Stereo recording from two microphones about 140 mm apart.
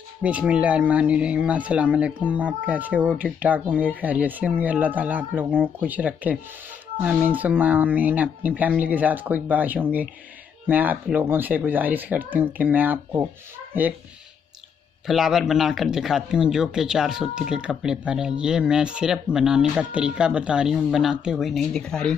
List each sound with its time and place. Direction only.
0.2 s speech: 10° right (ahead or behind)
15.0 s speech: centre (ahead or behind)